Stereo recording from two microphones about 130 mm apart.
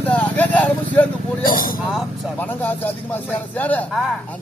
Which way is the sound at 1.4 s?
90° left.